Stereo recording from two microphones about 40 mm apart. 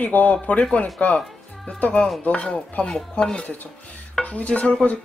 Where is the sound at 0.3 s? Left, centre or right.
Left.